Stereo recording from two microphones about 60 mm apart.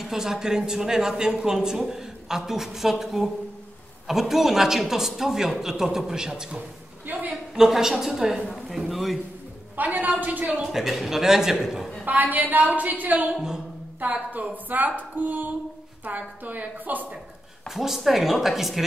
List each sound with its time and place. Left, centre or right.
0.0 s a woman's voice: centre
9.8 s a woman's voice: right
10.7 s a woman's voice: centre
12.0 s a woman's voice: right
13.3 s speech: centre
13.9 s a woman's voice: right
17.6 s a woman's voice: centre